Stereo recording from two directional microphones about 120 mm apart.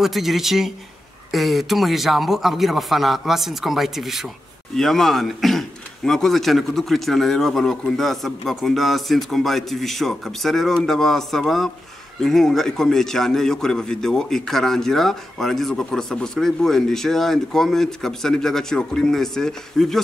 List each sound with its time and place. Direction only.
0.0 s a man's voice: centre (ahead or behind)